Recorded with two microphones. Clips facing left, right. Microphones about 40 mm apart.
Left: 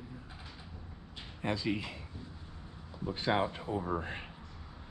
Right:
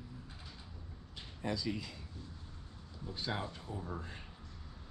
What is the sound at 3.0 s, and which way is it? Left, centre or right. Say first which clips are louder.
Speech: left 9 dB; left.